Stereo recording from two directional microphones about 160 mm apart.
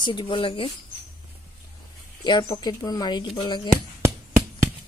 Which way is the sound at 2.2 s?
25° left (ahead or behind).